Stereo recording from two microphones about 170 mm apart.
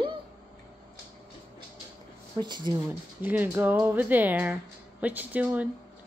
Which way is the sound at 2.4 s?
25° right (ahead or behind).